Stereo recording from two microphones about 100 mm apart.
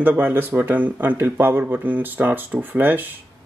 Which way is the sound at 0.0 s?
20° right (ahead or behind).